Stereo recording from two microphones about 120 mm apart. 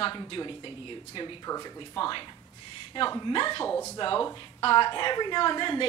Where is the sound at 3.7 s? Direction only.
20° left (ahead or behind).